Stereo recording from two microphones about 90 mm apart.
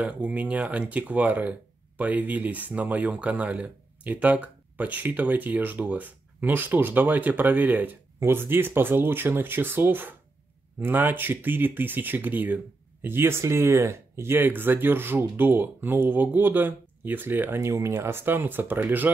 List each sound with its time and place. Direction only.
0.0 s speech: 15° right (ahead or behind)